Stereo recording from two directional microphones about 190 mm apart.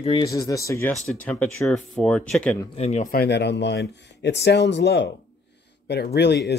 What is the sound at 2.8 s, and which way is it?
Speech, 35° left (ahead or behind).